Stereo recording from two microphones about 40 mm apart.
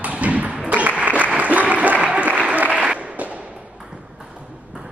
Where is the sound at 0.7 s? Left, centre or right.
Right.